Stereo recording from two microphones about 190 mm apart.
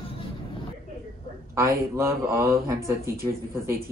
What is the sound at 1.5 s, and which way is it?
A woman's voice, 15° right (ahead or behind).